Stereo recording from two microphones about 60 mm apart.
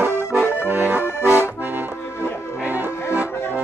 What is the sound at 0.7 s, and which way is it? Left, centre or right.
Accordion, right.